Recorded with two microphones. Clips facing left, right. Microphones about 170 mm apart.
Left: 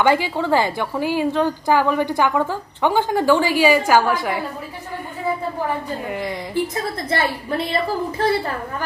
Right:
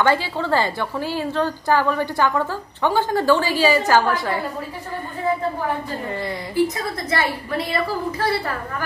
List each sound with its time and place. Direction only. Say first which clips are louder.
0.0 s a woman's voice: left 2 dB; 15° left (ahead or behind)
6.0 s a woman's voice: left 1 dB; 15° left (ahead or behind)
6.7 s a woman's voice: left 1 dB; 25° left (ahead or behind)